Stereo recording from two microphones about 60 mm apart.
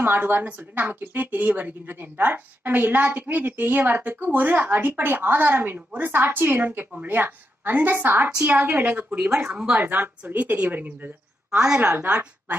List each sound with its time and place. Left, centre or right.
0.0 s a woman's voice: right
11.5 s a woman's voice: centre
11.8 s a woman's voice: right
12.1 s a woman's voice: right